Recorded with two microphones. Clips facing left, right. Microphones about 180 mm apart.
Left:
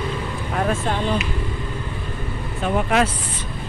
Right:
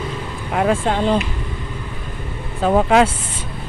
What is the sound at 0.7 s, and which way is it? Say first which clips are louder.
Speech: right 6 dB; 30° right (ahead or behind).